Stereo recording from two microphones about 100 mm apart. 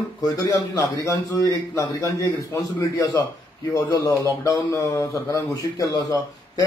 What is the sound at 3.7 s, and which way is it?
A man's voice, 35° left (ahead or behind).